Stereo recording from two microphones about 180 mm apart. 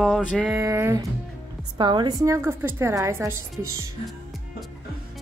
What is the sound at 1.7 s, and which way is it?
A woman's voice, 25° right (ahead or behind).